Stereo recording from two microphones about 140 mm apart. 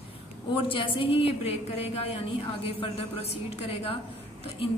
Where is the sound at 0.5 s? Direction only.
35° left (ahead or behind).